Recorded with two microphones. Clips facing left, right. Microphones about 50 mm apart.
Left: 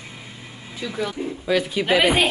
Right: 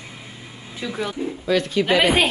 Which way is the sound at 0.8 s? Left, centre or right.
Right.